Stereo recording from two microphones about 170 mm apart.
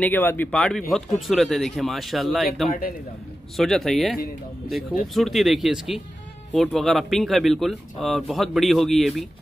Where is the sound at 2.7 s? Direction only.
55° left (ahead or behind).